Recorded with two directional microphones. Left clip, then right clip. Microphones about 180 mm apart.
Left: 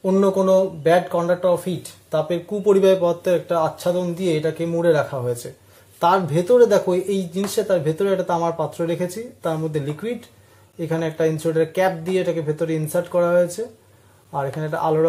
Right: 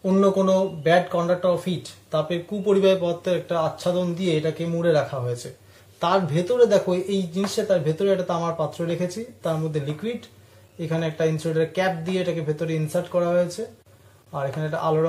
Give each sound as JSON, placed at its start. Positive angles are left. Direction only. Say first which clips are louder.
{"t": 0.0, "sound": "speech", "louder": "left 2 dB", "side_deg": 55}